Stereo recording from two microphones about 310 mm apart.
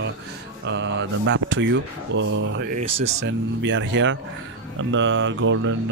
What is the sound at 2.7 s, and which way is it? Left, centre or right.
Speech, right.